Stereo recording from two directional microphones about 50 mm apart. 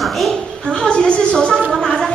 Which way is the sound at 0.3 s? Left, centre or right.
Centre.